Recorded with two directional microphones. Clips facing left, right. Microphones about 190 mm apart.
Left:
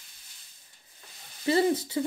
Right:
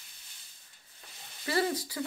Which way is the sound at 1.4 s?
25° left (ahead or behind).